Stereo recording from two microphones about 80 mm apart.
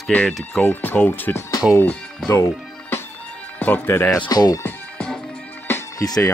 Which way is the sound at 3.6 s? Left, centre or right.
Left.